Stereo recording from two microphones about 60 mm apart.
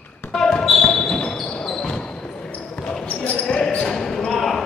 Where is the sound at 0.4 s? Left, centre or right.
Centre.